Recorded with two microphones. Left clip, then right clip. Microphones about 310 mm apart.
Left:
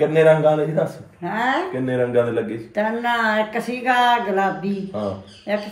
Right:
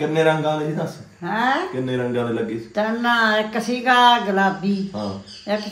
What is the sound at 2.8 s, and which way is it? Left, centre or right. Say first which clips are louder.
A woman's voice: right 1 dB; centre.